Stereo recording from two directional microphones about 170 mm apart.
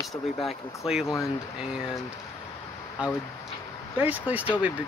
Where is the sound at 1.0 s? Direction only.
15° left (ahead or behind).